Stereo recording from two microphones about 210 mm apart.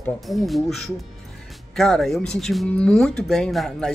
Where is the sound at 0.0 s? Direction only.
Centre (ahead or behind).